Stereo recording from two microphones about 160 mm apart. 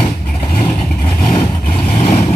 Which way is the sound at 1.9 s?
40° left (ahead or behind).